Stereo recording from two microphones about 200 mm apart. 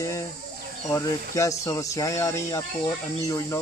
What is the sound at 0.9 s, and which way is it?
Speech, 15° left (ahead or behind).